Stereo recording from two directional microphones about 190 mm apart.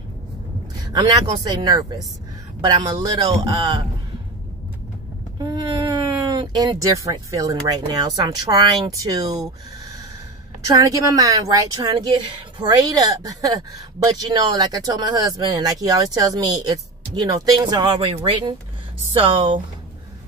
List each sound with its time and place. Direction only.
0.9 s a woman's voice: 20° right (ahead or behind)
5.4 s a sound: 20° right (ahead or behind)
6.6 s a woman's voice: 20° right (ahead or behind)
10.7 s a woman's voice: 15° right (ahead or behind)